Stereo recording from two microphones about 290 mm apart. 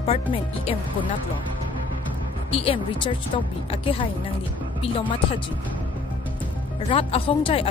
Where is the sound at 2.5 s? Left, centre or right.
Centre.